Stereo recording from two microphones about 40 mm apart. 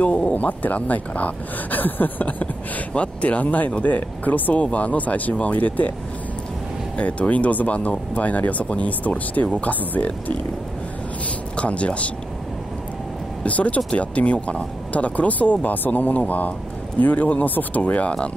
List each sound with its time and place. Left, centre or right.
0.0 s speech: left
2.9 s speech: left
7.0 s speech: left
11.5 s speech: left
13.5 s speech: left